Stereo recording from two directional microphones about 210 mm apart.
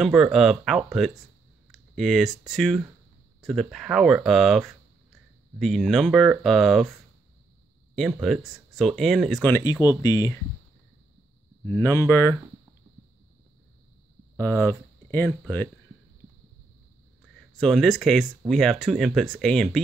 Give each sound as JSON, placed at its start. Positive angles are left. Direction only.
{"t": 0.0, "sound": "speech", "side_deg": -5}
{"t": 8.2, "sound": "speech", "side_deg": 0}
{"t": 11.6, "sound": "speech", "side_deg": 10}
{"t": 14.3, "sound": "speech", "side_deg": 10}
{"t": 17.6, "sound": "speech", "side_deg": 0}